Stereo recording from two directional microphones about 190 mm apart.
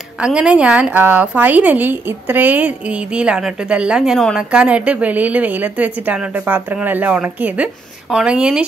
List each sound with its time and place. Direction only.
0.2 s a woman's voice: 5° right (ahead or behind)